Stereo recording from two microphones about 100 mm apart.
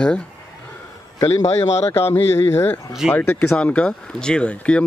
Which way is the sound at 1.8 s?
25° left (ahead or behind).